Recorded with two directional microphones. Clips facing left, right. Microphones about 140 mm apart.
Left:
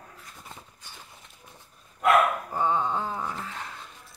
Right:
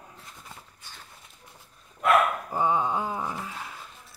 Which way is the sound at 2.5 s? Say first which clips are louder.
Right 1 dB; 10° right (ahead or behind).